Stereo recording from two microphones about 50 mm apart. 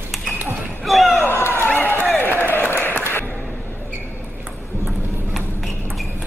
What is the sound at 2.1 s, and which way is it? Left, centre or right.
Applause, left.